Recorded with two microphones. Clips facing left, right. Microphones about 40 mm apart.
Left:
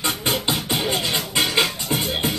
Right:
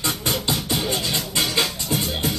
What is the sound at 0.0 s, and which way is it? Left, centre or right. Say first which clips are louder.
Music: left 2 dB; centre.